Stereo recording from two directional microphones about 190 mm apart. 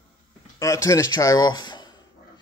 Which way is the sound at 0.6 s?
15° left (ahead or behind).